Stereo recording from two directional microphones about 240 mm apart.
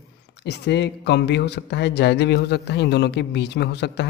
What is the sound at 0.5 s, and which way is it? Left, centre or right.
Speech, left.